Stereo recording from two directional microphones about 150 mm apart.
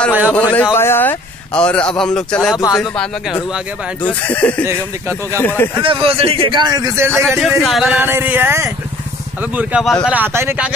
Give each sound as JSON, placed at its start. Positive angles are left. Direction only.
{"t": 0.4, "sound": "speech", "side_deg": 10}
{"t": 4.6, "sound": "speech", "side_deg": -20}
{"t": 5.4, "sound": "speech", "side_deg": 15}
{"t": 5.8, "sound": "a man's voice", "side_deg": -35}
{"t": 7.2, "sound": "speech", "side_deg": 0}
{"t": 8.0, "sound": "a sound", "side_deg": -15}